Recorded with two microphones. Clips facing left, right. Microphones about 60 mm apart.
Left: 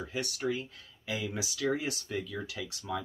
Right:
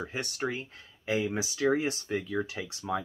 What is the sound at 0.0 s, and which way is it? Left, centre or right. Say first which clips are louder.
Speech: right 1 dB; right.